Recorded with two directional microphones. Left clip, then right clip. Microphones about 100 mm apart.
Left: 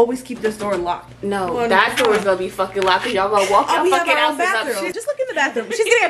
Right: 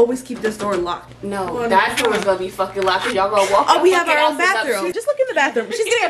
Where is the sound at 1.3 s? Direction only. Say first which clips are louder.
Even; 20° left (ahead or behind).